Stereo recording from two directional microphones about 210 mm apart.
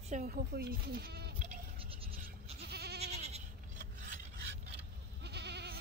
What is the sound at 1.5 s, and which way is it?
Goat, 25° right (ahead or behind).